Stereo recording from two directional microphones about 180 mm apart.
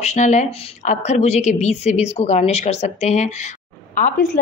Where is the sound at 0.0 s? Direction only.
40° left (ahead or behind).